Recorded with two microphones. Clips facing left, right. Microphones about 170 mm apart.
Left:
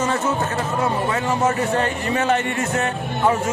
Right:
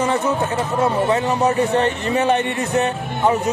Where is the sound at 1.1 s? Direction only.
20° right (ahead or behind).